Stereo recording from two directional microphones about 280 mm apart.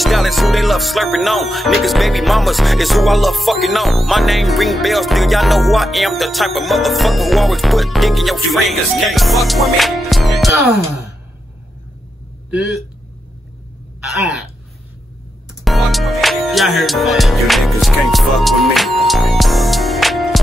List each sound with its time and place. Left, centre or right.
0.0 s music: centre
15.6 s music: centre